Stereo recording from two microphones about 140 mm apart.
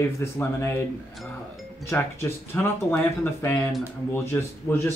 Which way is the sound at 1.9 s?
15° left (ahead or behind).